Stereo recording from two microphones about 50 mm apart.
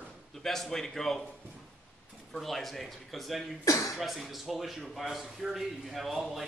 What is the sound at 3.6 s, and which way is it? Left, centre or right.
Speech, left.